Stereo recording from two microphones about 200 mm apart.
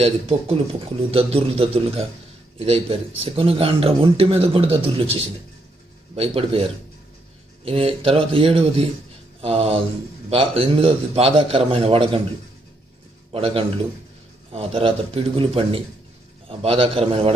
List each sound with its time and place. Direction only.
0.0 s a man's voice: 30° right (ahead or behind)
13.3 s a man's voice: 25° right (ahead or behind)